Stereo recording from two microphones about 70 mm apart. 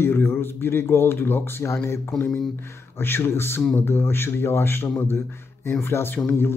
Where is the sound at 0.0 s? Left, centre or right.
Left.